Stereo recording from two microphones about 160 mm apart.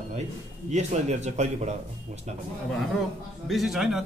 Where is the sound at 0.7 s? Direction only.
45° right (ahead or behind).